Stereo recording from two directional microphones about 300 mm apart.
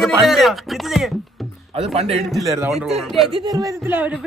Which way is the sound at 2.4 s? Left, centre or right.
Centre.